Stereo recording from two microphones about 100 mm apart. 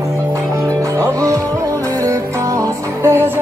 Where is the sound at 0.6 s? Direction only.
30° right (ahead or behind).